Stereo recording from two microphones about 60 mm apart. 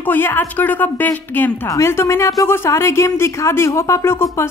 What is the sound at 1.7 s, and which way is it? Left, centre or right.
Speech, left.